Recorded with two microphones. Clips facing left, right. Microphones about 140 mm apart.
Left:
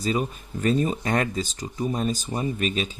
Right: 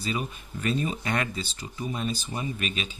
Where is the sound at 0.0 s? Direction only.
40° left (ahead or behind).